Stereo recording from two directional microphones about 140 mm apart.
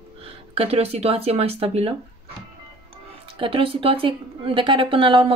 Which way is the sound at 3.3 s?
40° right (ahead or behind).